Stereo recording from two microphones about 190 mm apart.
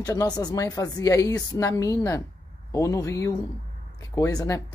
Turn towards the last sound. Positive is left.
turn(degrees=15)  # may be behind; listen again after turning